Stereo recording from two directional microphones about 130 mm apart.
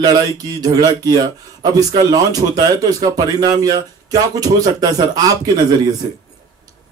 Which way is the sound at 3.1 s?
30° right (ahead or behind).